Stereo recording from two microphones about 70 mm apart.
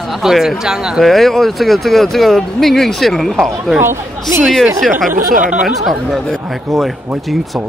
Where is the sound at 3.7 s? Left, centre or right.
Right.